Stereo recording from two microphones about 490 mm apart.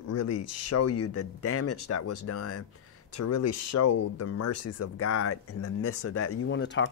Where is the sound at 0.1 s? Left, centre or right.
Left.